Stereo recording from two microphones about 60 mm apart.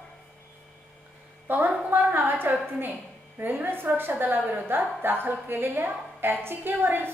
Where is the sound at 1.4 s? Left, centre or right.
Right.